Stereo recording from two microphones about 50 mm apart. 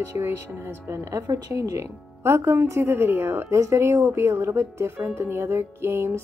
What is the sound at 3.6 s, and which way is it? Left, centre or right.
Speech, right.